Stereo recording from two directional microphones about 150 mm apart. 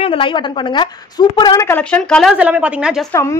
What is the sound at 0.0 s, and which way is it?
A woman's voice, 35° left (ahead or behind).